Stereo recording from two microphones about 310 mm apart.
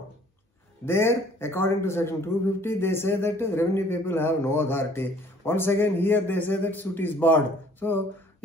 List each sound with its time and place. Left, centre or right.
0.8 s a man's voice: centre